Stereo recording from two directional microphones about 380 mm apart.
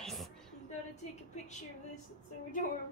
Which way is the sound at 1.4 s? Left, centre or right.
Centre.